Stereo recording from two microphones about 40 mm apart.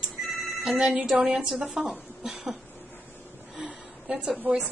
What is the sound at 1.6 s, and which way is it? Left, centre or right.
Speech, right.